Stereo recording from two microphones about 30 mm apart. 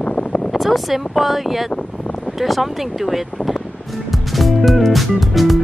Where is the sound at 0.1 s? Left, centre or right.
Left.